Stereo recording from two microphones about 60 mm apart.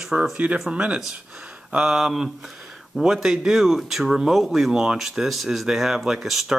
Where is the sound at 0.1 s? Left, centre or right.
Centre.